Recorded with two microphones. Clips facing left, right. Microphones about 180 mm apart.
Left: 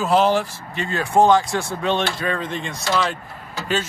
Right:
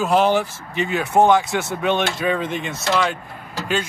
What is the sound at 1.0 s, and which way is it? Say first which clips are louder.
A man's voice: left 1 dB; 20° right (ahead or behind).